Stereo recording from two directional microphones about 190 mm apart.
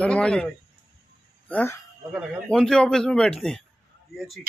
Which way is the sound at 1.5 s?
10° left (ahead or behind).